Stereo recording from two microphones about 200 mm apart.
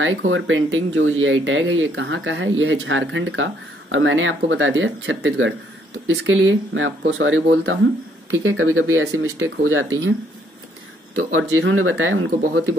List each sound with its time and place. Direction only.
0.0 s speech: 75° right (ahead or behind)
8.3 s speech: 85° right
11.1 s speech: 90° right